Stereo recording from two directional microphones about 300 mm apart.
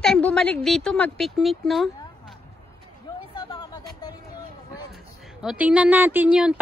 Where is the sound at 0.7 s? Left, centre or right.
Centre.